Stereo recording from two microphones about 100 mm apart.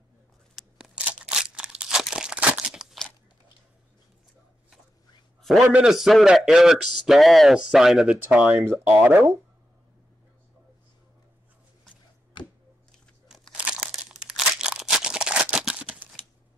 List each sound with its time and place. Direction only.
0.7 s crunch: 10° right (ahead or behind)
5.6 s a man's voice: 10° right (ahead or behind)
13.3 s crunch: 10° right (ahead or behind)
14.1 s a sound: 5° right (ahead or behind)